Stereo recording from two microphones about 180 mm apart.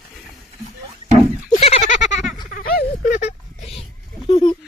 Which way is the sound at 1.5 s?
35° left (ahead or behind).